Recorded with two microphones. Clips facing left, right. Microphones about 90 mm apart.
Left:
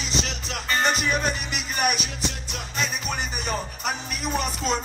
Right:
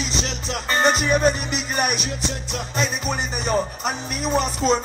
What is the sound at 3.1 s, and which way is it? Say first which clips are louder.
Music: right 5 dB; 25° right (ahead or behind).